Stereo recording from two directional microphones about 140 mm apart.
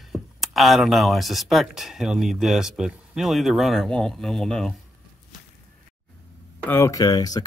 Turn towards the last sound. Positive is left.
turn(degrees=25)  # may be behind; listen again after turning